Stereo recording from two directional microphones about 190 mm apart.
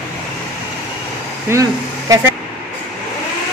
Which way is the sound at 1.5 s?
15° right (ahead or behind).